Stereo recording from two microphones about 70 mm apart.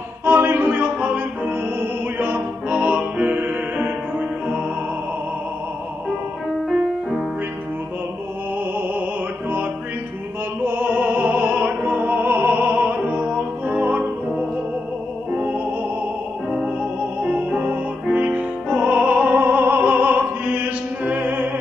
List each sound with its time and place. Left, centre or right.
0.2 s music: right
6.7 s music: centre
10.6 s opera: right
15.3 s music: right
17.2 s music: centre